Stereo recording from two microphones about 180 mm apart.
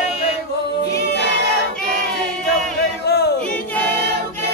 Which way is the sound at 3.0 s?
65° left (ahead or behind).